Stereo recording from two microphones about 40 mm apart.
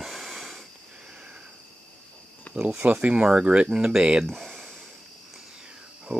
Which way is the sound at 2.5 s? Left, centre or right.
Left.